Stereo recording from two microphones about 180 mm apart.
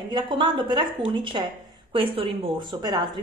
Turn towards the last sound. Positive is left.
turn(degrees=-25)  # may be behind; listen again after turning